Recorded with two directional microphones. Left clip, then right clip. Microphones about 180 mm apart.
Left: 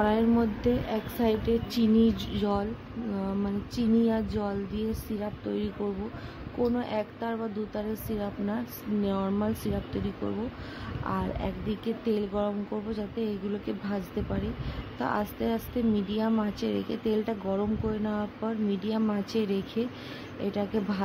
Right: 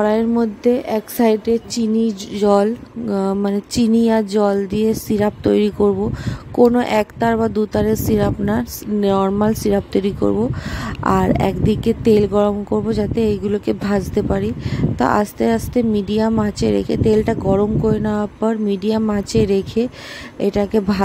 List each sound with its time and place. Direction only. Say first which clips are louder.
0.0 s a woman's voice: right 9 dB; 40° right (ahead or behind)